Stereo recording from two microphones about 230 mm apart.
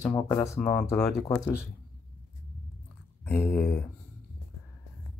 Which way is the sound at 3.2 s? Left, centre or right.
Centre.